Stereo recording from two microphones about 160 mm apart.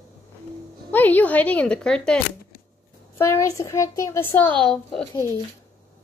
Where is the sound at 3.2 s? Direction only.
20° left (ahead or behind).